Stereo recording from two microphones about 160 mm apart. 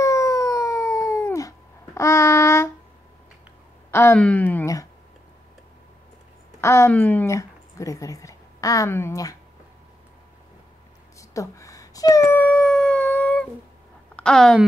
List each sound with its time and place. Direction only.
0.0 s cat: 20° left (ahead or behind)
2.0 s child singing: 20° left (ahead or behind)
3.9 s speech: 15° left (ahead or behind)
6.6 s speech: 15° left (ahead or behind)
11.1 s dog: 20° left (ahead or behind)
14.1 s a woman's voice: 5° left (ahead or behind)